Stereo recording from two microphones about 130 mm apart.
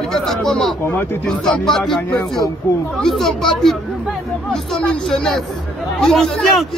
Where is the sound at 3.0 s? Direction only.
5° left (ahead or behind).